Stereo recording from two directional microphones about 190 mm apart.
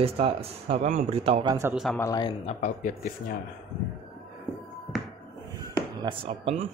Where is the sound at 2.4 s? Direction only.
40° left (ahead or behind).